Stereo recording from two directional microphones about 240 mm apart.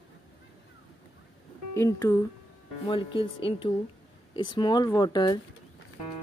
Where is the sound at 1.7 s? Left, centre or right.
Centre.